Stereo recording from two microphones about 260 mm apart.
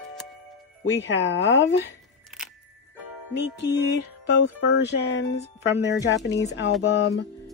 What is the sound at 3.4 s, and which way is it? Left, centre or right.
Music, left.